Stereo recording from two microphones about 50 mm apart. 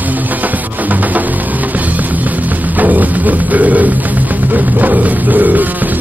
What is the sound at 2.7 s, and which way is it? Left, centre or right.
Music, right.